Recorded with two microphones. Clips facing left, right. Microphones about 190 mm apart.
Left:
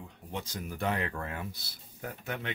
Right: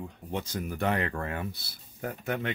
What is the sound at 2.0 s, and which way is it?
Speech, 50° right (ahead or behind).